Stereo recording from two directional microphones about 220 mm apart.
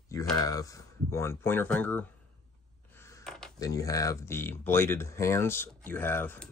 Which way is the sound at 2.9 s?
10° left (ahead or behind).